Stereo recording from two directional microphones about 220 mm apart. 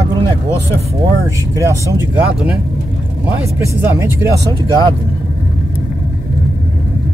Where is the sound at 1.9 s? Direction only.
5° right (ahead or behind).